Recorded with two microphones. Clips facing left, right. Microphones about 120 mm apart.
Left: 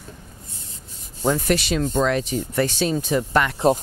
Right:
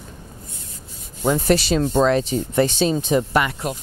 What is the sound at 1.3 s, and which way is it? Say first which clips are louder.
Speech: right 3 dB; 35° right (ahead or behind).